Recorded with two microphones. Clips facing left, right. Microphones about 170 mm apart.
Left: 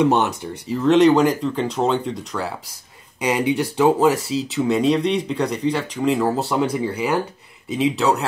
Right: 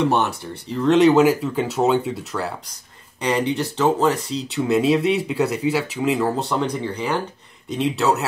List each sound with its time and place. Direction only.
0.0 s speech: 15° left (ahead or behind)
0.7 s speech: centre (ahead or behind)
3.2 s speech: 10° left (ahead or behind)